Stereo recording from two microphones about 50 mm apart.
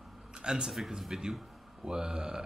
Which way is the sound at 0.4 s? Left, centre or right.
Centre.